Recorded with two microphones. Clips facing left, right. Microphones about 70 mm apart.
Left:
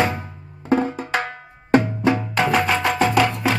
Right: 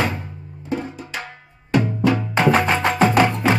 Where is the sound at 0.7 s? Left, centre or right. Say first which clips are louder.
Left 7 dB; left.